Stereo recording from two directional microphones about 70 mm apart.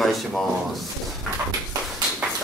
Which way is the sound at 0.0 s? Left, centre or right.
Centre.